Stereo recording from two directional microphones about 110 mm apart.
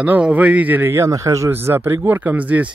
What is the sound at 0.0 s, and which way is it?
A man's voice, 15° right (ahead or behind).